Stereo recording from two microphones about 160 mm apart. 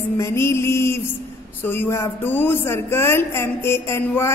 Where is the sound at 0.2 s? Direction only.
15° left (ahead or behind).